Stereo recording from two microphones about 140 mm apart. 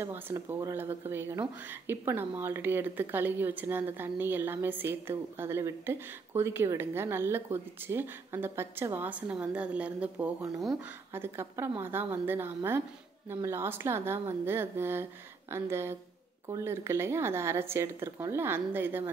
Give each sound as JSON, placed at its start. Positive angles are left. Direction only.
{"t": 0.0, "sound": "a woman's voice", "side_deg": -15}